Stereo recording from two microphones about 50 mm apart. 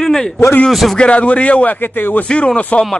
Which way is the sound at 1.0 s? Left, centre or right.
Left.